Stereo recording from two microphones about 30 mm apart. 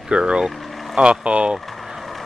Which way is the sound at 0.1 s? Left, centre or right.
Right.